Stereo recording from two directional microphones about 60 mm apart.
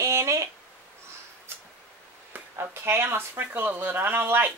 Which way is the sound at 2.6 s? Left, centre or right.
Right.